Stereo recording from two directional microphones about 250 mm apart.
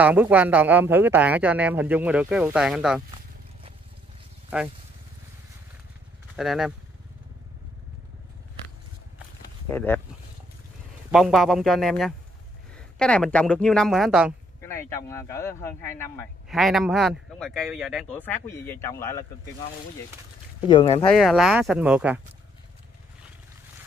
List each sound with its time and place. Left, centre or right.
0.0 s speech: centre
6.3 s speech: centre
9.7 s speech: centre
11.1 s speech: centre
14.6 s speech: centre
16.4 s speech: centre
20.6 s speech: left
21.1 s speech: centre